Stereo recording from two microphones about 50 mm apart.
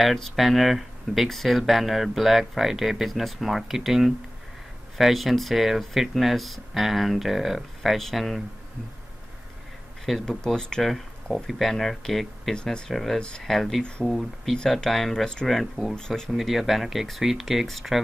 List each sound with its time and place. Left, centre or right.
0.0 s speech: centre
10.2 s speech: centre
13.8 s speech: left
14.1 s speech: centre
16.3 s speech: centre